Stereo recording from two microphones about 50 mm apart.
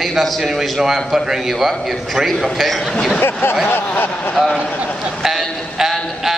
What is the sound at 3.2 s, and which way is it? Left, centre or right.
Speech, left.